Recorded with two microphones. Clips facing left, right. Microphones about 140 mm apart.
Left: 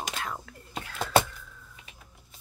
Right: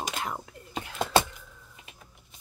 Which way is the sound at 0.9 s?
25° right (ahead or behind).